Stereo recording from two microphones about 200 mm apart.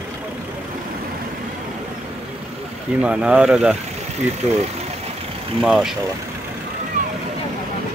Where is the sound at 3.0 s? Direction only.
5° right (ahead or behind).